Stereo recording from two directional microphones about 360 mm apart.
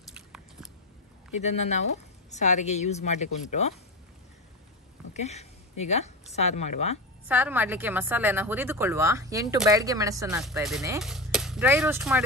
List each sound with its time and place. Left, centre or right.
0.1 s biting: centre
1.4 s speech: centre
5.1 s a woman's voice: centre
7.2 s a woman's voice: centre